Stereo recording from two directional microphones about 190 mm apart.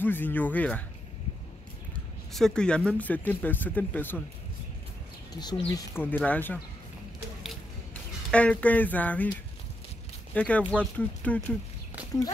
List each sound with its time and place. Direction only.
0.0 s speech: 10° left (ahead or behind)
2.3 s speech: 5° left (ahead or behind)
5.4 s speech: 20° left (ahead or behind)
6.0 s speech: 10° left (ahead or behind)
8.3 s speech: 5° left (ahead or behind)
10.3 s speech: 5° left (ahead or behind)